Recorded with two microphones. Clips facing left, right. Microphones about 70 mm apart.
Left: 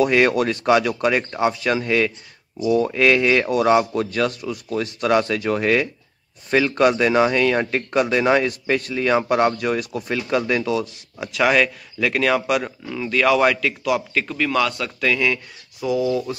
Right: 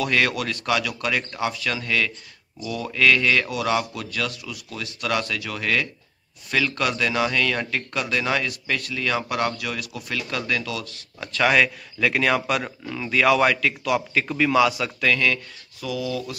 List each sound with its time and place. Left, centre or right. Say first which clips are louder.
0.0 s speech: left 6 dB; left
11.1 s speech: left 2 dB; centre
15.0 s speech: left 1 dB; centre
15.8 s speech: left 7 dB; left